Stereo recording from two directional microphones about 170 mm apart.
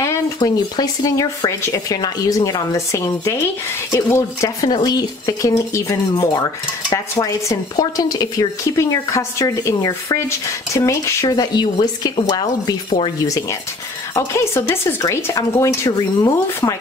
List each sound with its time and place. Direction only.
0.0 s speech: 20° left (ahead or behind)
14.1 s speech: 15° left (ahead or behind)